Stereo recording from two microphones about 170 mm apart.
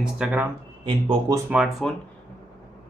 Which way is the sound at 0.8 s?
30° right (ahead or behind).